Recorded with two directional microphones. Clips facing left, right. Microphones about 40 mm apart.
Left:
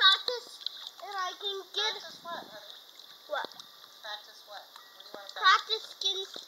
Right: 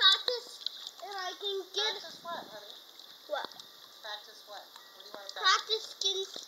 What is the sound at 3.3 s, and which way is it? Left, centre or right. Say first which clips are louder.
A child's voice: left 2 dB; centre.